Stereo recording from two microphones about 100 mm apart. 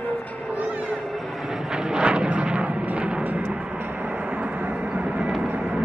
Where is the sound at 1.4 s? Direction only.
5° right (ahead or behind).